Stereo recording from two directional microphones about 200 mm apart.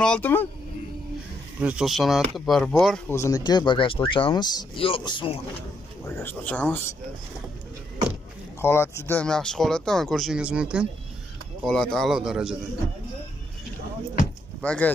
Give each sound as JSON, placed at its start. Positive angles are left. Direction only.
{"t": 0.0, "sound": "speech", "side_deg": 5}
{"t": 1.6, "sound": "speech", "side_deg": -5}
{"t": 3.1, "sound": "speech", "side_deg": 15}
{"t": 6.0, "sound": "speech", "side_deg": 10}
{"t": 8.5, "sound": "speech", "side_deg": 10}
{"t": 14.6, "sound": "speech", "side_deg": 5}